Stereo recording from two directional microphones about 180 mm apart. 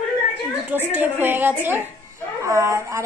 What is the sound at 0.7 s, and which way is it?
A child's voice, 10° right (ahead or behind).